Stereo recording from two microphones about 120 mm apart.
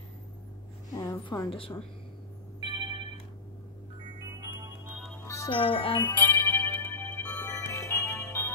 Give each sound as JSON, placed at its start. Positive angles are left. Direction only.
{"t": 0.9, "sound": "a sound", "side_deg": 30}
{"t": 2.6, "sound": "telephone", "side_deg": -40}
{"t": 5.2, "sound": "music", "side_deg": 25}
{"t": 5.5, "sound": "speech", "side_deg": 50}
{"t": 6.7, "sound": "music", "side_deg": 20}